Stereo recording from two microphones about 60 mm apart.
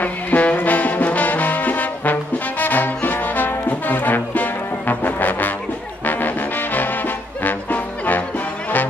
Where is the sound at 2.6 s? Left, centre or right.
Left.